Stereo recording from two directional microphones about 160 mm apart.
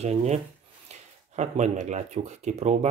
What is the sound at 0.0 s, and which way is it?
Speech, 45° right (ahead or behind).